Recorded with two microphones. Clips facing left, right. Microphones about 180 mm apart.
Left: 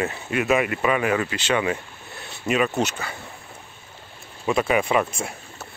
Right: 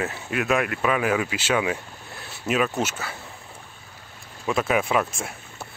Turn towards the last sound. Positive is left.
turn(degrees=0)  # may be behind; listen again after turning